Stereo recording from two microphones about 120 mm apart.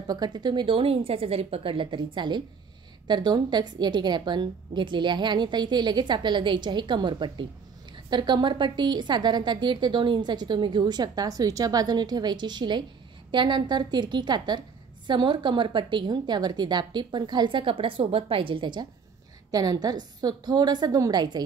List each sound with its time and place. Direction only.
0.0 s a woman's voice: 35° right (ahead or behind)
19.5 s a woman's voice: 30° right (ahead or behind)